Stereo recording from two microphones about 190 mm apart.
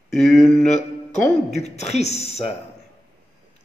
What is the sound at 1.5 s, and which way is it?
Speech, 35° left (ahead or behind).